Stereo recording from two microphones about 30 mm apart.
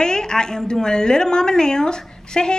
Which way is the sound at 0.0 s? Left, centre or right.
Left.